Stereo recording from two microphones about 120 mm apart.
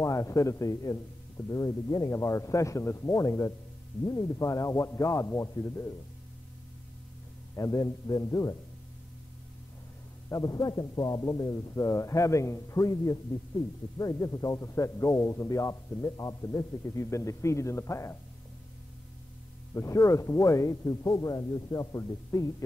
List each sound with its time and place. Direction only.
0.0 s a man's voice: 25° left (ahead or behind)
7.5 s a man's voice: 30° left (ahead or behind)
10.3 s a man's voice: 30° left (ahead or behind)
19.7 s a man's voice: 25° left (ahead or behind)